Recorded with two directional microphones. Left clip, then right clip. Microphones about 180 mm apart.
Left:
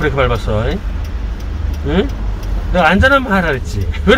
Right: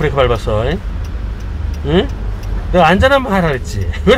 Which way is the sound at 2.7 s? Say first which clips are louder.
Right 1 dB; 55° right (ahead or behind).